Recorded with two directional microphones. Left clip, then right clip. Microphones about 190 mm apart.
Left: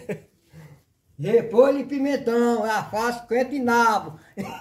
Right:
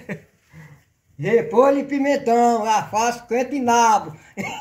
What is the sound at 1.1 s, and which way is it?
Speech, 5° right (ahead or behind).